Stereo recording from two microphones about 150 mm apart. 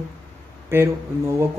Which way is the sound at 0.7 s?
15° right (ahead or behind).